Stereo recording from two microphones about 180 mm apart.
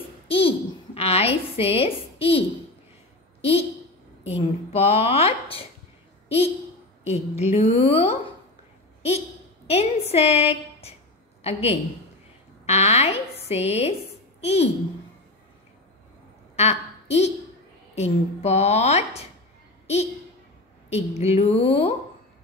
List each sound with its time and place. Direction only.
0.3 s a sound: 30° left (ahead or behind)
4.3 s a woman's voice: 35° left (ahead or behind)
9.7 s a woman's voice: 35° left (ahead or behind)
16.5 s a sound: 35° left (ahead or behind)
17.9 s a woman's voice: 35° left (ahead or behind)
20.9 s a woman's voice: 35° left (ahead or behind)